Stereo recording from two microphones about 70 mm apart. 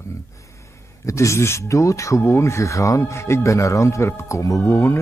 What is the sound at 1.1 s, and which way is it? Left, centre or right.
Speech, left.